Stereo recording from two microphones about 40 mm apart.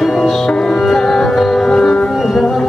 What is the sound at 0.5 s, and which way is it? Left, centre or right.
Sitar, centre.